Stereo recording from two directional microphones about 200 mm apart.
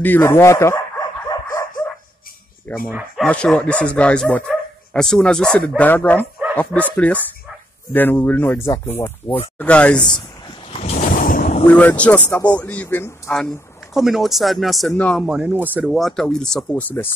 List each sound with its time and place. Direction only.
0.0 s speech: 10° left (ahead or behind)
1.3 s chicken: 15° left (ahead or behind)
2.9 s speech: 5° right (ahead or behind)
3.3 s speech: 5° left (ahead or behind)
10.7 s a sound: 35° left (ahead or behind)
11.6 s speech: 10° left (ahead or behind)